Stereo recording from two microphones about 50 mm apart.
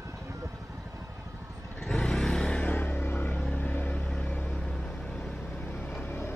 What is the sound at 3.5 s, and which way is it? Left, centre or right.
Vehicle, left.